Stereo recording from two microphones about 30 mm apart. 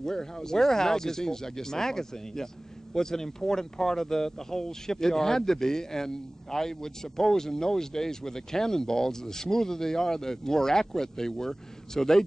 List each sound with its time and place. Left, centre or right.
0.0 s speech: centre